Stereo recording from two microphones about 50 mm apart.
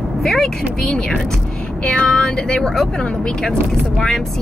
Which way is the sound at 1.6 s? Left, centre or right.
Centre.